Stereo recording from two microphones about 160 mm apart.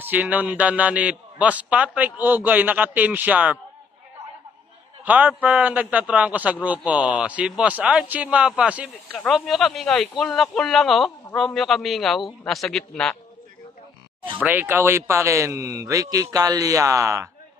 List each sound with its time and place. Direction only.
0.0 s a man's voice: 10° right (ahead or behind)
5.0 s a man's voice: 10° right (ahead or behind); by 13.2 s 5° left (ahead or behind)
14.2 s speech: 10° right (ahead or behind)